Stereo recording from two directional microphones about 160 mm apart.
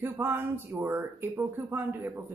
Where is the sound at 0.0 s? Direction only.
15° right (ahead or behind).